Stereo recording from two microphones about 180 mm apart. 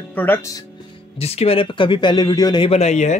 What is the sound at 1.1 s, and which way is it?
Speech, 35° left (ahead or behind).